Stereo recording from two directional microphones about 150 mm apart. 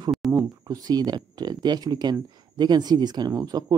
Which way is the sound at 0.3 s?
20° right (ahead or behind).